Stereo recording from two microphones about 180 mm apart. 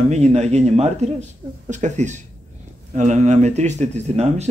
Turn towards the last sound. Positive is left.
turn(degrees=-35)  # may be behind; listen again after turning